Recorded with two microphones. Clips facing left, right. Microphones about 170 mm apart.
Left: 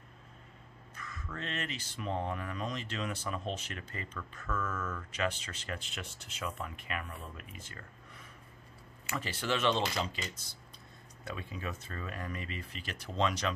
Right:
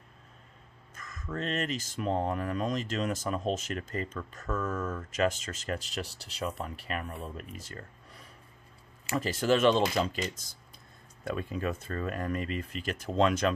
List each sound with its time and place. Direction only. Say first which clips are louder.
0.9 s speech: right 6 dB; 45° right (ahead or behind)
11.2 s speech: right 8 dB; 50° right (ahead or behind)